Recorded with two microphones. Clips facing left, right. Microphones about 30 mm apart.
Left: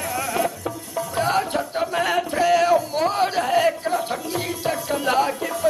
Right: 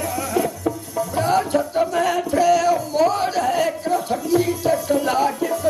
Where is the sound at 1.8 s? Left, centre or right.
Left.